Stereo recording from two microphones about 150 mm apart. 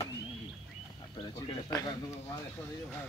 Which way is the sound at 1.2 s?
25° left (ahead or behind).